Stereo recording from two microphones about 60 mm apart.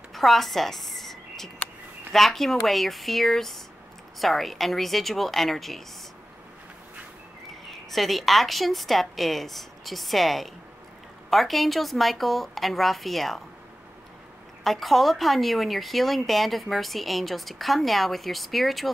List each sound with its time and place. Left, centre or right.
0.1 s a sound: centre
2.1 s speech: centre
7.6 s speech: centre
14.6 s speech: centre